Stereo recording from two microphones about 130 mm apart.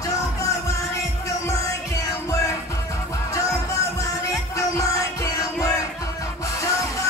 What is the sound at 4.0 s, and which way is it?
Music, 25° left (ahead or behind).